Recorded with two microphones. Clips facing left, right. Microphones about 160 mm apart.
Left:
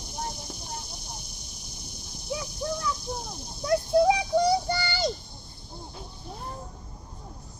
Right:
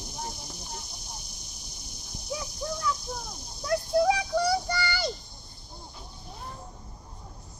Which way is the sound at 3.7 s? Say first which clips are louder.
Left 3 dB; 20° left (ahead or behind).